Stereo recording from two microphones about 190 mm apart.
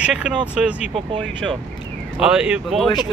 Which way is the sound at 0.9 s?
25° right (ahead or behind).